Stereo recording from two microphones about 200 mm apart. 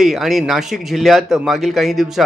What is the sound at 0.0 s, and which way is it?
A man's voice, centre (ahead or behind).